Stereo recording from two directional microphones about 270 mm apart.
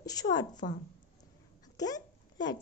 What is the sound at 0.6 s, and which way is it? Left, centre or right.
Speech, left.